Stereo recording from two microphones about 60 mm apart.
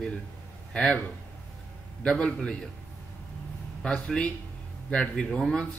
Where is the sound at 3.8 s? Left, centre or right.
Centre.